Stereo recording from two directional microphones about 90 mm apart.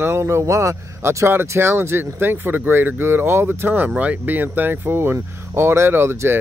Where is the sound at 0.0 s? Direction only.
30° right (ahead or behind).